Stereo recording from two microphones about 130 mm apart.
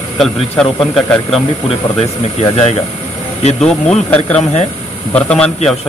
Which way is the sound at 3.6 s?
10° left (ahead or behind).